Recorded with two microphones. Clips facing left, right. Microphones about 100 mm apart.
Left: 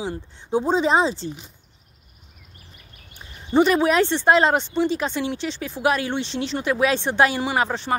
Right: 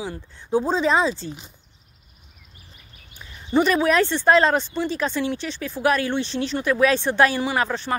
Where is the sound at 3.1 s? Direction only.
25° left (ahead or behind).